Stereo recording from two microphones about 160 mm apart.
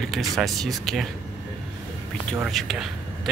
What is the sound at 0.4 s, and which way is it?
Speech, centre (ahead or behind).